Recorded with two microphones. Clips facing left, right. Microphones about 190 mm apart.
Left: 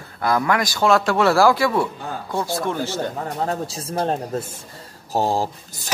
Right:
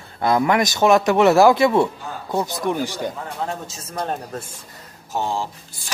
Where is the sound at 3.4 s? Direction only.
35° left (ahead or behind).